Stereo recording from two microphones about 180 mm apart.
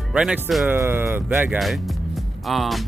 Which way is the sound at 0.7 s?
15° right (ahead or behind).